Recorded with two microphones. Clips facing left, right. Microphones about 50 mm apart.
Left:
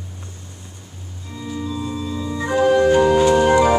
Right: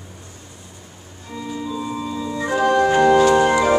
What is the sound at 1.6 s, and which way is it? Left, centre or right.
Organ, centre.